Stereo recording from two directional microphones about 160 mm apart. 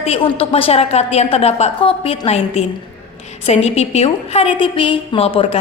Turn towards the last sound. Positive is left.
turn(degrees=35)  # may be behind; listen again after turning